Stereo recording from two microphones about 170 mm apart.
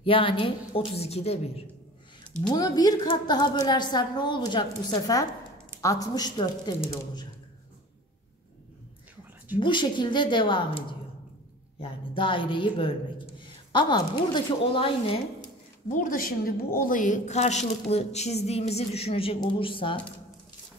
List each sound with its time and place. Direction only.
0.0 s a woman's voice: 30° left (ahead or behind)
2.5 s a woman's voice: 20° left (ahead or behind)
9.6 s a woman's voice: 30° left (ahead or behind)
15.9 s a woman's voice: 50° left (ahead or behind); by 20.2 s 30° left (ahead or behind)